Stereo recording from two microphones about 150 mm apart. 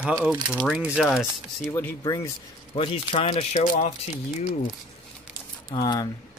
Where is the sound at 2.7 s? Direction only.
35° left (ahead or behind).